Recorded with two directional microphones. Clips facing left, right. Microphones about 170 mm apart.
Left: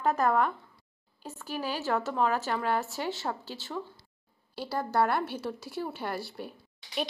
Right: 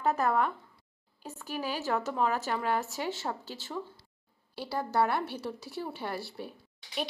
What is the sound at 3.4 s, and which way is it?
Speech, 45° right (ahead or behind).